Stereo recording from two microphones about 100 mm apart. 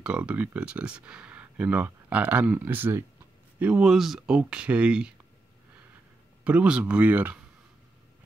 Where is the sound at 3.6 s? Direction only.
10° right (ahead or behind).